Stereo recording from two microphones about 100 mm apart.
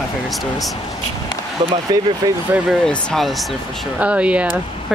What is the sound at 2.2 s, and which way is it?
Speech, 40° right (ahead or behind).